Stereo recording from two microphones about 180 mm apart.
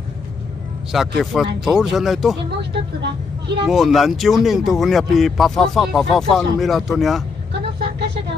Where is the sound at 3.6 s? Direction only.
Centre (ahead or behind).